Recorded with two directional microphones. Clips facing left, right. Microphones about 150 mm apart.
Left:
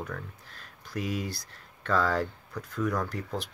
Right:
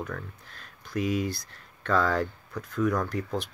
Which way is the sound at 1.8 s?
5° left (ahead or behind).